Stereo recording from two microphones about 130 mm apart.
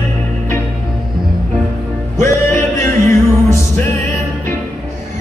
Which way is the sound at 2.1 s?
20° left (ahead or behind).